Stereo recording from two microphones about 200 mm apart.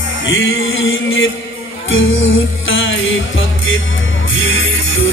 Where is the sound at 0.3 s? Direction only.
80° left.